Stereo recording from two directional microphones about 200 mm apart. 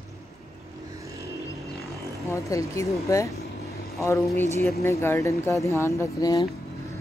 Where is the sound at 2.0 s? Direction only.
15° left (ahead or behind).